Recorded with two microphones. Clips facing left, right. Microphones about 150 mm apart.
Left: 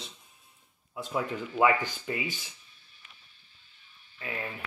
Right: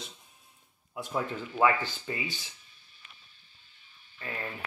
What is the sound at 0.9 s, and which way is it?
Speech, 5° left (ahead or behind).